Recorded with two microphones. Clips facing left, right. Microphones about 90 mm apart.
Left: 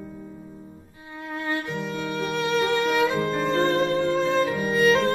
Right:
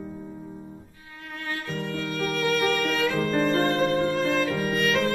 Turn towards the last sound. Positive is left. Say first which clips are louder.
# left 4 dB
turn(degrees=30)  # may be behind; listen again after turning